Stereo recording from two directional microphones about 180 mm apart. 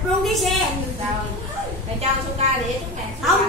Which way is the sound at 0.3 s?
Centre (ahead or behind).